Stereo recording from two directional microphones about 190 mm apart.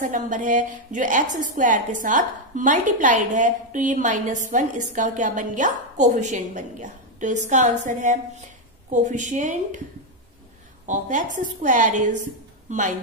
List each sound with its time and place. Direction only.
0.0 s a woman's voice: 40° right (ahead or behind)
10.9 s a woman's voice: 40° right (ahead or behind)